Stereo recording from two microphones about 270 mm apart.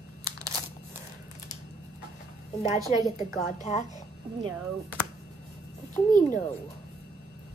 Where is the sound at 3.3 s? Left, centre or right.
Left.